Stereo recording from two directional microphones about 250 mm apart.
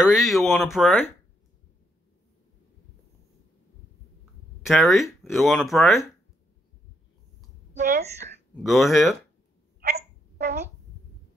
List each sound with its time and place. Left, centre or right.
0.0 s speech: centre
4.6 s speech: centre
7.7 s speech: right
8.6 s speech: centre
9.8 s hiccup: right